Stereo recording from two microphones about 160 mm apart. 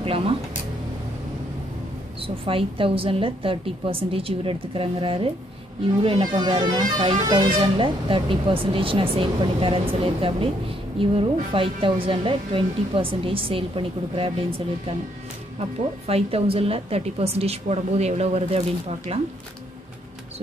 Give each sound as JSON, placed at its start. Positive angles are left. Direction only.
{"t": 2.1, "sound": "speech", "side_deg": -35}
{"t": 16.1, "sound": "speech", "side_deg": -40}